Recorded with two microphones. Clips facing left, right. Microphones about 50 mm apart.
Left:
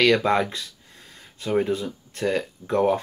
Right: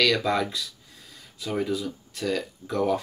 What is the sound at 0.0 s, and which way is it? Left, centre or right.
Speech, left.